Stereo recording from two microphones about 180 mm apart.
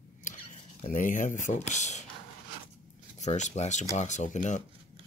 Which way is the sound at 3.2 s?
40° left (ahead or behind).